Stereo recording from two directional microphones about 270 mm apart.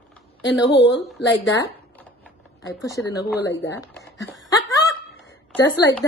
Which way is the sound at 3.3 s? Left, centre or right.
Left.